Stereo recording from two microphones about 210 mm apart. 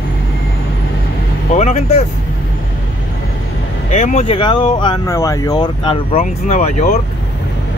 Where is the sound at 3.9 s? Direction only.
30° left (ahead or behind).